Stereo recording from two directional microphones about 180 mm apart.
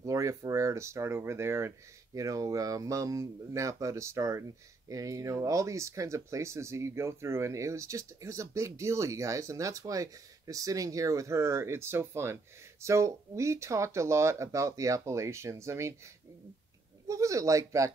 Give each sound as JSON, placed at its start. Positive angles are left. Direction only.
{"t": 0.0, "sound": "speech", "side_deg": -15}
{"t": 17.1, "sound": "speech", "side_deg": -15}